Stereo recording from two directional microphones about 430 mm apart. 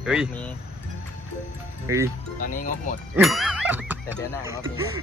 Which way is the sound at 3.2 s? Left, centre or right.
Centre.